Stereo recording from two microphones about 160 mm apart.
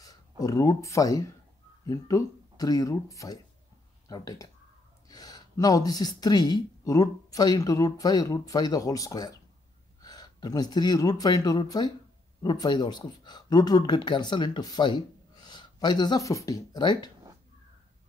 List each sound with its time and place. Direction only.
0.0 s speech: 20° left (ahead or behind)